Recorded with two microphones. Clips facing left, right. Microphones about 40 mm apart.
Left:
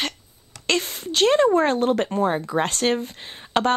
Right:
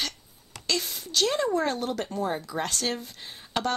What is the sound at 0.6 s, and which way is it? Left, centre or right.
A woman's voice, left.